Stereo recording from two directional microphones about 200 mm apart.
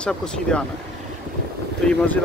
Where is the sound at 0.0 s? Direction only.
5° left (ahead or behind).